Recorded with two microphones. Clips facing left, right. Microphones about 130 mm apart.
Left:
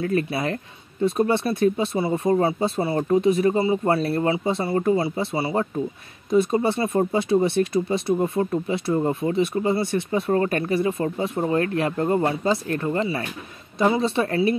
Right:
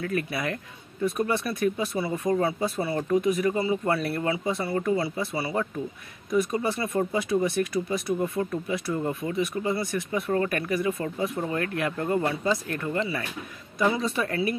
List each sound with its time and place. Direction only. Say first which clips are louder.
0.0 s speech: left 5 dB; 30° left (ahead or behind)